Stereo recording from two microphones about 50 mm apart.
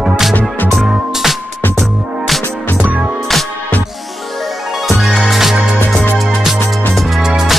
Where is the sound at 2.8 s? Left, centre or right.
Right.